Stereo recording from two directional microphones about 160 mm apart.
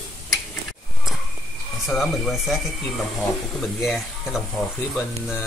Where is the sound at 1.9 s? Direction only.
Centre (ahead or behind).